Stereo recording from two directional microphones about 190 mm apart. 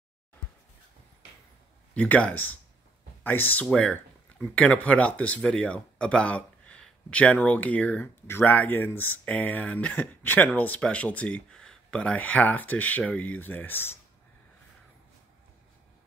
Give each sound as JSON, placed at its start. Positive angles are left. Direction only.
{"t": 2.0, "sound": "speech", "side_deg": 10}